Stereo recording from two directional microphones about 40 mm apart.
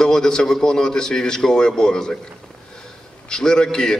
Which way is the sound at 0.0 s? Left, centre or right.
Centre.